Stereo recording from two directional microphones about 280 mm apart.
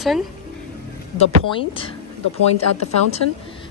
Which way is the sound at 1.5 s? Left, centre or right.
Centre.